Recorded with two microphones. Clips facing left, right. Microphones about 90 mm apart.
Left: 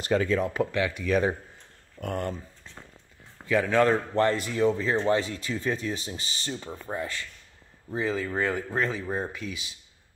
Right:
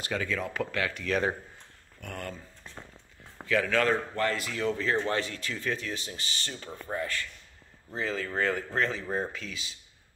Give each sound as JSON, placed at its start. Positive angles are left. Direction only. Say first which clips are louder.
{"t": 0.1, "sound": "speech", "louder": "left 8 dB", "side_deg": 30}
{"t": 0.5, "sound": "speech", "louder": "left 4 dB", "side_deg": 20}
{"t": 2.0, "sound": "speech", "louder": "left 8 dB", "side_deg": 35}
{"t": 3.4, "sound": "speech", "louder": "left 4 dB", "side_deg": 20}